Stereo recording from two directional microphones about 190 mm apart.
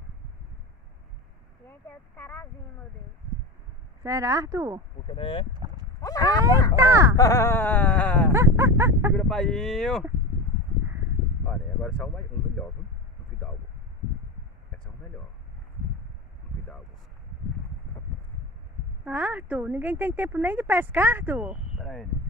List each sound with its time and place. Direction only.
1.7 s a sound: 10° left (ahead or behind)
4.0 s speech: 15° right (ahead or behind)
5.0 s speech: 25° left (ahead or behind)
5.5 s dog: 20° right (ahead or behind)
5.9 s speech: 20° left (ahead or behind)
6.7 s speech: 15° right (ahead or behind)
7.2 s a sound: 15° left (ahead or behind)
8.3 s dog: 15° right (ahead or behind)
9.1 s speech: 5° left (ahead or behind)
11.8 s speech: 5° left (ahead or behind)
19.0 s speech: 10° right (ahead or behind)